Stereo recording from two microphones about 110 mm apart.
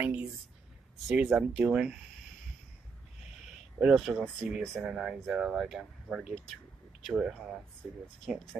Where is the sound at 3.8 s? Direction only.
Centre (ahead or behind).